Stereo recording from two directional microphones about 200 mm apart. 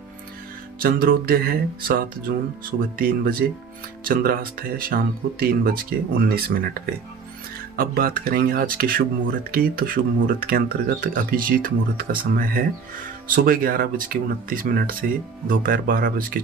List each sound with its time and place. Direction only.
0.7 s speech: 50° right (ahead or behind)